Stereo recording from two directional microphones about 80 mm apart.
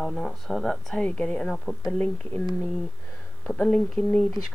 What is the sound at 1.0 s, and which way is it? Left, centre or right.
Speech, centre.